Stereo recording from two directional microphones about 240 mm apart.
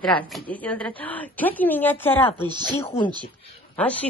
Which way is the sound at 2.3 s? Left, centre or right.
Centre.